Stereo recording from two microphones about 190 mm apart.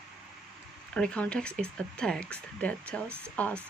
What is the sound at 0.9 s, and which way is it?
Speech, 5° left (ahead or behind).